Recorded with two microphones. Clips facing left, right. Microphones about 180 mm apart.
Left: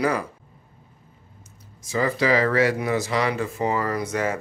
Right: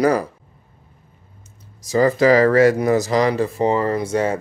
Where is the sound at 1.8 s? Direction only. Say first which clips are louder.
Right 8 dB; 40° right (ahead or behind).